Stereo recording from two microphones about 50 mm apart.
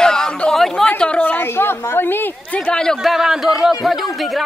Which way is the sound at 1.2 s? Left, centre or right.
Left.